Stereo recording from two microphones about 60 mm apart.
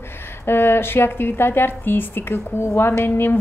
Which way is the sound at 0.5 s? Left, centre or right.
Left.